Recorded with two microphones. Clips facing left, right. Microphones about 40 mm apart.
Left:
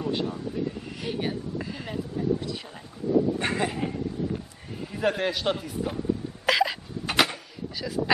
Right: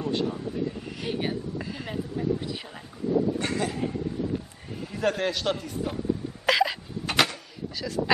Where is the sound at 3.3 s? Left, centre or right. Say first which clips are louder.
Left 1 dB; left.